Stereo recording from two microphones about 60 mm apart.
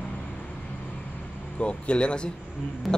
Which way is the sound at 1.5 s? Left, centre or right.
Centre.